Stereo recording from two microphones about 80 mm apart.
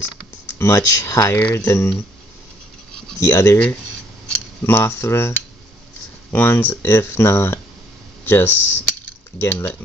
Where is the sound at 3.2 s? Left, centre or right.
Left.